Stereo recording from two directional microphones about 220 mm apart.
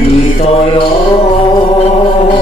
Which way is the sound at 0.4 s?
25° left (ahead or behind).